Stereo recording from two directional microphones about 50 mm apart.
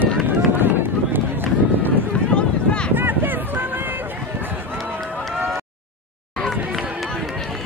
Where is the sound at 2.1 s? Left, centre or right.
Left.